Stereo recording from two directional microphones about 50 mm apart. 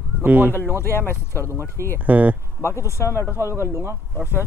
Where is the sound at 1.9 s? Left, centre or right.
Right.